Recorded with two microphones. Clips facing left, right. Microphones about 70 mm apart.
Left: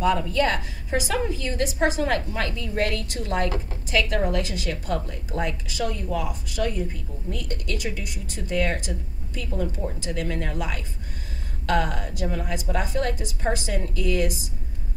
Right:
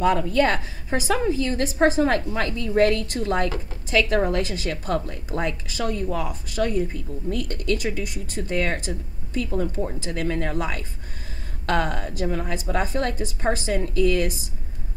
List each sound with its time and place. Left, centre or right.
0.0 s a woman's voice: right